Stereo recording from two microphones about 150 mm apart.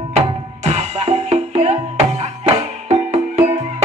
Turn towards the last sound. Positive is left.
turn(degrees=-50)  # may be behind; listen again after turning